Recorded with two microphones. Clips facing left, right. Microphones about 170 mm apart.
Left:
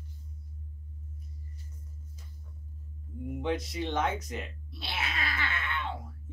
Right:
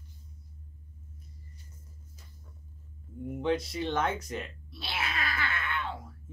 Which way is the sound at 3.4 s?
20° left (ahead or behind).